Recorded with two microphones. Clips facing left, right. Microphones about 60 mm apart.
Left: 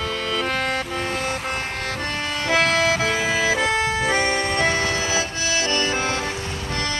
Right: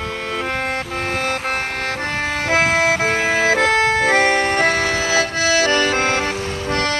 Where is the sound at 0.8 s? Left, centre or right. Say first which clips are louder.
Right 3 dB; right.